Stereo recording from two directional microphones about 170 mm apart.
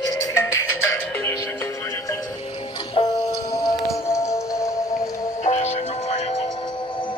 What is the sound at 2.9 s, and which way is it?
Music, 25° left (ahead or behind).